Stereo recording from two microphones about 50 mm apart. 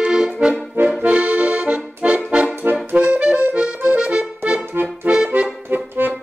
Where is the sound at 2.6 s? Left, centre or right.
Right.